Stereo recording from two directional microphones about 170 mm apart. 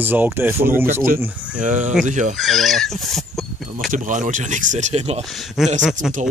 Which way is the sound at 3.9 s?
45° right (ahead or behind).